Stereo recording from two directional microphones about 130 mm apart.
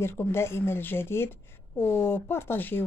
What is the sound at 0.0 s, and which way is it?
A woman's voice, 20° left (ahead or behind).